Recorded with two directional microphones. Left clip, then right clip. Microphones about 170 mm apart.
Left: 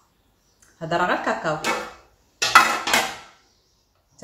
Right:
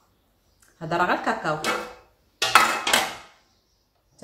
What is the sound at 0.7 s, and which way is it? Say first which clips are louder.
Speech: left 1 dB; 10° right (ahead or behind).